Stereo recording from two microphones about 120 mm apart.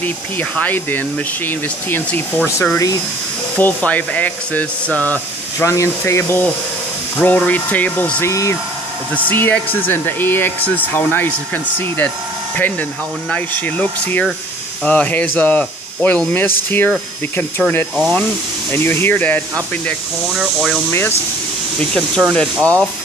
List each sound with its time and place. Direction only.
0.0 s speech: 15° left (ahead or behind)
3.5 s speech: 10° left (ahead or behind)
8.3 s speech: 25° left (ahead or behind)
9.1 s speech: 15° left (ahead or behind)
20.3 s speech: centre (ahead or behind)